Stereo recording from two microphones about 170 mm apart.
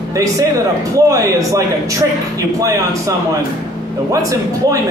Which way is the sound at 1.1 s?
20° right (ahead or behind).